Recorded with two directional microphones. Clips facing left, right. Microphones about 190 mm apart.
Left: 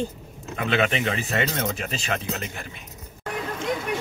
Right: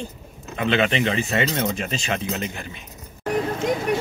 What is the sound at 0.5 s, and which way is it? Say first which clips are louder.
Speech: right 3 dB; 5° left (ahead or behind).